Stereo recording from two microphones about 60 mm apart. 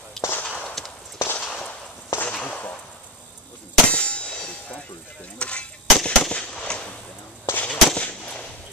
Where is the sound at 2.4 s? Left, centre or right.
Left.